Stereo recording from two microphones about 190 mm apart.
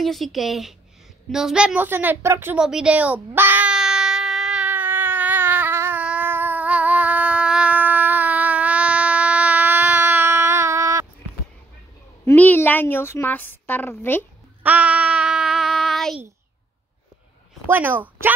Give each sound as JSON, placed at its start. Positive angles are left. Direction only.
{"t": 0.0, "sound": "speech", "side_deg": 0}
{"t": 1.3, "sound": "a sound", "side_deg": -5}
{"t": 12.3, "sound": "a woman's voice", "side_deg": 10}
{"t": 14.6, "sound": "child singing", "side_deg": -5}
{"t": 17.6, "sound": "speech", "side_deg": -10}